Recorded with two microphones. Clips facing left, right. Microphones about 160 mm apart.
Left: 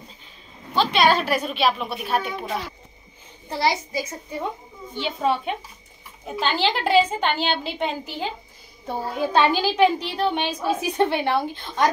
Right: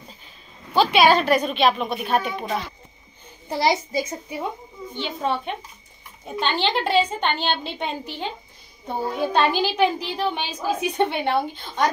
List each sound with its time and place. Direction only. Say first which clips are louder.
0.7 s a woman's voice: right 3 dB; 5° right (ahead or behind)
3.4 s a child's voice: right 2 dB; 20° right (ahead or behind)
6.2 s a woman's voice: left 1 dB; 5° left (ahead or behind)